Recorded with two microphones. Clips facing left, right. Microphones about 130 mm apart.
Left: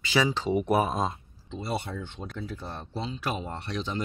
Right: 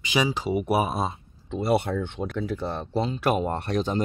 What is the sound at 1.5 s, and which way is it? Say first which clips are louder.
Speech: right 9 dB; 60° right (ahead or behind).